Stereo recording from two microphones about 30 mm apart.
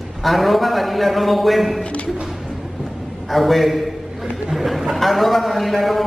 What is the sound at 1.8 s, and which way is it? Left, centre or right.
Speech, left.